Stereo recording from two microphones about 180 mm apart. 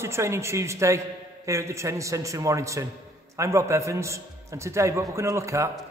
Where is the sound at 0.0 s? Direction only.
15° right (ahead or behind).